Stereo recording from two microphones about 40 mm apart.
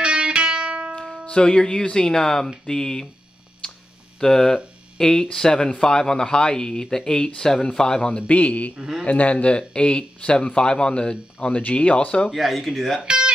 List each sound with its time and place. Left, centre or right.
0.0 s music: right
1.2 s speech: left
4.2 s speech: centre
8.3 s speech: left
12.3 s speech: centre
13.0 s guitar: right